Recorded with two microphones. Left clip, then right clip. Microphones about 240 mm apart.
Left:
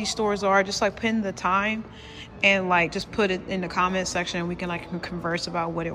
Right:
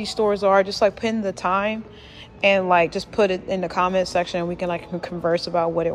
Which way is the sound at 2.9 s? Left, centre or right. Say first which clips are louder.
Right 5 dB; centre.